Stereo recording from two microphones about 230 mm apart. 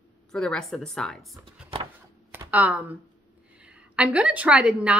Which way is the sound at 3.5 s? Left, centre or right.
Centre.